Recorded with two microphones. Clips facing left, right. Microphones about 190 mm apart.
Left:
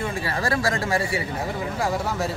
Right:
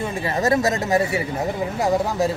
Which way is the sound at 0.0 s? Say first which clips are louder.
Right 4 dB; 20° right (ahead or behind).